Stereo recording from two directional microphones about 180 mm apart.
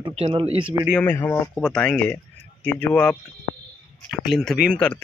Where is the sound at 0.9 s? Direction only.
15° left (ahead or behind).